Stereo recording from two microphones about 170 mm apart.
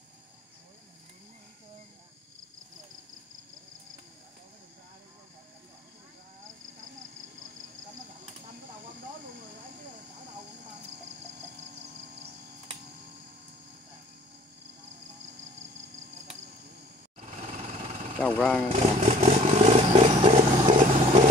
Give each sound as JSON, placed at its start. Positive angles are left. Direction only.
{"t": 17.2, "sound": "jackhammer", "side_deg": -40}
{"t": 18.2, "sound": "speech", "side_deg": 5}
{"t": 18.7, "sound": "vehicle", "side_deg": -45}